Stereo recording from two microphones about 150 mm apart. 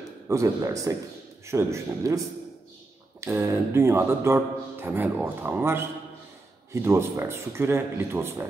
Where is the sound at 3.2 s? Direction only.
15° right (ahead or behind).